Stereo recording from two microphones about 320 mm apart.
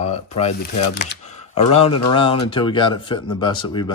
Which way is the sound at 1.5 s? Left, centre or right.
Centre.